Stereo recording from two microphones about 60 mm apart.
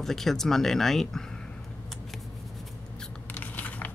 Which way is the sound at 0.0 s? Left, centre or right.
Centre.